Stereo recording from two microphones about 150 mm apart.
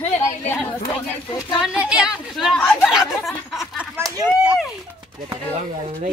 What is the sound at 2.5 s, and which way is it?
Speech, 10° left (ahead or behind).